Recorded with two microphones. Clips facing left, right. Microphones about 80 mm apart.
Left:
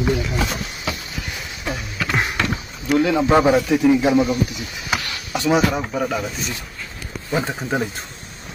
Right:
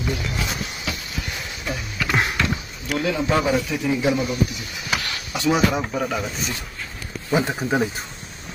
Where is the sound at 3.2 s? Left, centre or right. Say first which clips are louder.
Left 5 dB; left.